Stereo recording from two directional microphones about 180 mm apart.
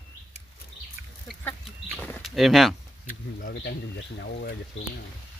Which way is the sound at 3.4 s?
70° left (ahead or behind).